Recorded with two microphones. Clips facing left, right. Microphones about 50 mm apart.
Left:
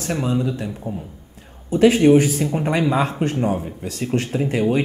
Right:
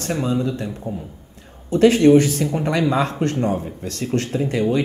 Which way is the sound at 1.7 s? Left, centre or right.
Centre.